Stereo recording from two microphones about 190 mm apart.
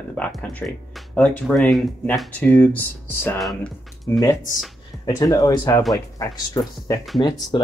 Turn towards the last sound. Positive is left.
turn(degrees=25)  # may be behind; listen again after turning